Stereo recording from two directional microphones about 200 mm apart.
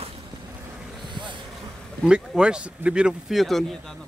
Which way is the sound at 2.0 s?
5° right (ahead or behind).